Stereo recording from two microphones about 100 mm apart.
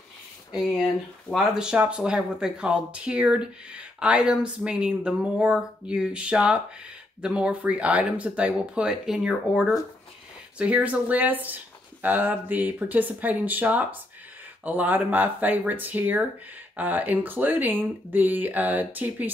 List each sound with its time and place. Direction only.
1.3 s speech: 5° right (ahead or behind)